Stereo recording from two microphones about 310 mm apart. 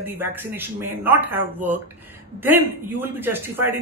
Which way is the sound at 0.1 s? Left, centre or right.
Centre.